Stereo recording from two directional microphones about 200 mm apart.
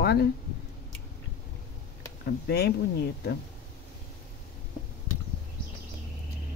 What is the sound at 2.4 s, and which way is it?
Speech, 55° left (ahead or behind).